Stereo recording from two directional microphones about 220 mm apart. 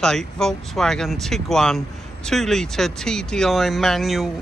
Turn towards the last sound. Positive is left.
turn(degrees=0)  # may be behind; listen again after turning